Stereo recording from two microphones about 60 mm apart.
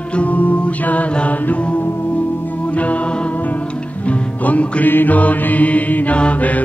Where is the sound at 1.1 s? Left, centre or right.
Left.